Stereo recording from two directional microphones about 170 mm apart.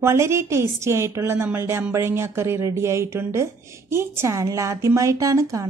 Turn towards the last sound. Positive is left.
turn(degrees=-20)  # may be behind; listen again after turning